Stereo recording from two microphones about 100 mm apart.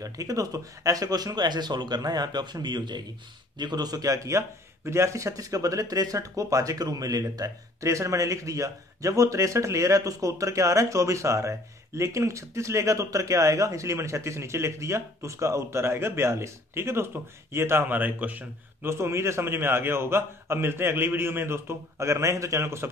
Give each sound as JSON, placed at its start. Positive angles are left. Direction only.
{"t": 0.0, "sound": "speech", "side_deg": -35}